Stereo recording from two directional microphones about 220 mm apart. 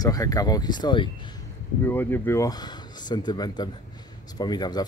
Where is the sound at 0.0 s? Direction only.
15° left (ahead or behind).